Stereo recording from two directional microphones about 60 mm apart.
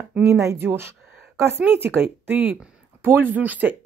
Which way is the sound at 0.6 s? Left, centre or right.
Right.